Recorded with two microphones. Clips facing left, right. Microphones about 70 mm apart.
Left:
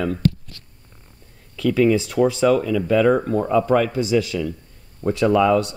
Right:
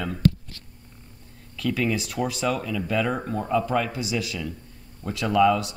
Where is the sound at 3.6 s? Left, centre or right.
Left.